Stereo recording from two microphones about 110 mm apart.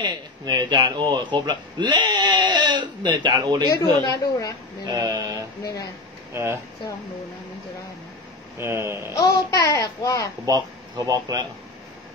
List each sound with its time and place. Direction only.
0.0 s speech: 40° right (ahead or behind)
4.1 s a child's voice: 30° left (ahead or behind)
4.8 s speech: 35° right (ahead or behind)
8.5 s speech: 25° right (ahead or behind)
9.2 s a child's voice: 35° left (ahead or behind)
10.4 s speech: 35° right (ahead or behind)